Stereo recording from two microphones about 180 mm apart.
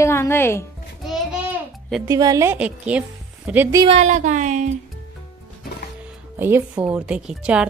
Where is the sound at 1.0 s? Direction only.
5° right (ahead or behind).